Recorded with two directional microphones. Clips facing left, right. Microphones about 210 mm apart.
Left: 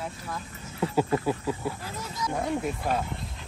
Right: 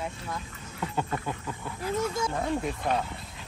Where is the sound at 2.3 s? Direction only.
5° left (ahead or behind).